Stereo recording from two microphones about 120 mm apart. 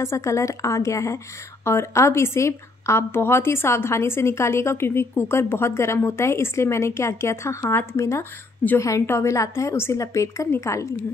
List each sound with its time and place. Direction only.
0.0 s a woman's voice: 25° left (ahead or behind)